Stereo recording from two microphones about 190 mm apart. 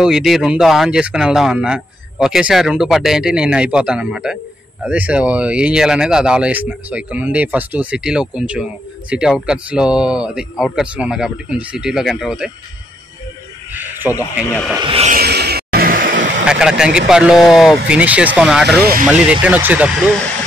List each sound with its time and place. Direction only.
0.0 s speech: centre (ahead or behind)
13.7 s snake: 10° right (ahead or behind)
14.8 s speech: 30° right (ahead or behind)
15.0 s vehicle: 55° right (ahead or behind); by 16.4 s 70° right (ahead or behind)
16.4 s speech: 5° right (ahead or behind)